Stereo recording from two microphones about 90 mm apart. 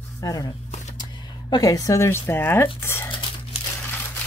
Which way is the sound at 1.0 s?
50° left (ahead or behind).